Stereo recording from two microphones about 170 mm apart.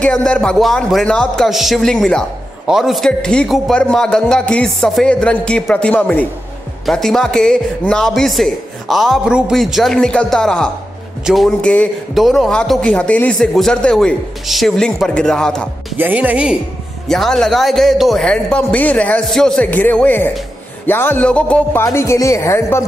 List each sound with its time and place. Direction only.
0.0 s a man's voice: 5° left (ahead or behind)
16.0 s a man's voice: 10° right (ahead or behind); by 20.2 s 10° left (ahead or behind)
20.8 s music: 10° left (ahead or behind)